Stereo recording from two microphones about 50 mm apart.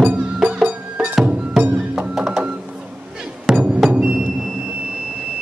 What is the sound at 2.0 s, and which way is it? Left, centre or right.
Music, centre.